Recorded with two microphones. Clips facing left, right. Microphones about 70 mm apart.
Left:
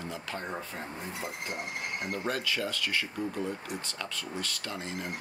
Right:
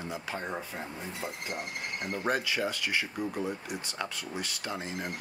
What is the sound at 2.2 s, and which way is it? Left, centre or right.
Speech, centre.